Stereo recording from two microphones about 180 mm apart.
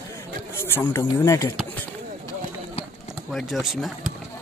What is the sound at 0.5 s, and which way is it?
A man's voice, 15° left (ahead or behind).